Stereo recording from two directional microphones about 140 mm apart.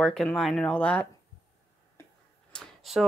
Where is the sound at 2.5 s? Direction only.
Centre (ahead or behind).